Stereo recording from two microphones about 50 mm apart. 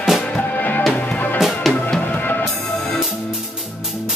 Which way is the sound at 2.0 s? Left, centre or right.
Left.